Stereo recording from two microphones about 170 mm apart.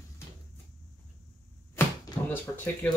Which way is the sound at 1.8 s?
15° left (ahead or behind).